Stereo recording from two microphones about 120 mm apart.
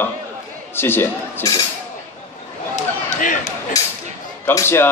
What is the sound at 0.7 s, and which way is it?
Speech, 20° left (ahead or behind).